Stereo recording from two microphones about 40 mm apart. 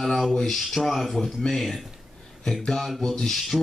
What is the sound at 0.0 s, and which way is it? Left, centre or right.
Speech, centre.